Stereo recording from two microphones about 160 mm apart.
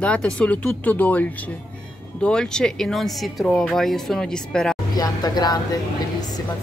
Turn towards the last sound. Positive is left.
turn(degrees=25)  # may be behind; listen again after turning